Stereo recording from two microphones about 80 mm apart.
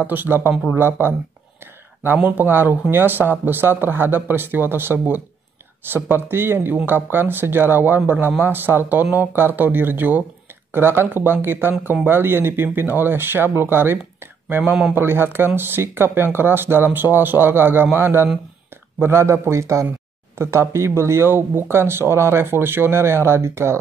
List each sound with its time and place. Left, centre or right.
0.0 s speech: right
2.1 s speech: right